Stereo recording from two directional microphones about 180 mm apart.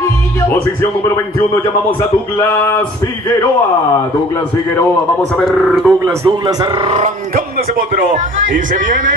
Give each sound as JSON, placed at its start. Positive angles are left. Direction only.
{"t": 5.3, "sound": "speech", "side_deg": 0}
{"t": 6.2, "sound": "a man's voice", "side_deg": -20}
{"t": 6.9, "sound": "a sound", "side_deg": -40}
{"t": 8.5, "sound": "speech", "side_deg": -45}